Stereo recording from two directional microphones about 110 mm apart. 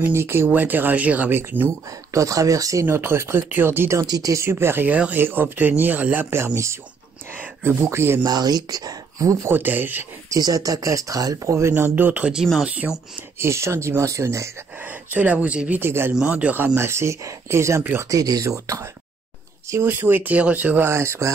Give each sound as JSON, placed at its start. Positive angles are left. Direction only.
{"t": 0.0, "sound": "speech", "side_deg": -20}
{"t": 2.1, "sound": "speech", "side_deg": -30}
{"t": 8.2, "sound": "speech", "side_deg": -40}
{"t": 10.3, "sound": "speech", "side_deg": -35}
{"t": 11.7, "sound": "speech", "side_deg": -15}
{"t": 13.4, "sound": "speech", "side_deg": -25}